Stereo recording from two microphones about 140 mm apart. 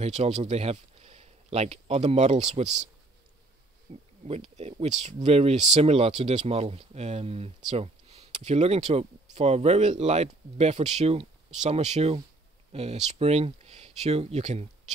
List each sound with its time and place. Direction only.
0.0 s speech: 50° right (ahead or behind)
4.2 s speech: 50° right (ahead or behind)